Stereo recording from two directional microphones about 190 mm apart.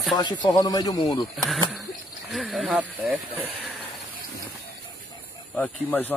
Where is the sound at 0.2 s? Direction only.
25° left (ahead or behind).